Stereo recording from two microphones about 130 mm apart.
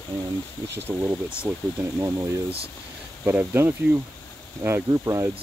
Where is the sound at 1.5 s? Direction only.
25° right (ahead or behind).